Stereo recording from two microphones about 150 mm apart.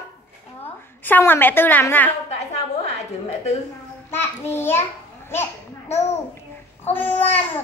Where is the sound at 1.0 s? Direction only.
15° left (ahead or behind).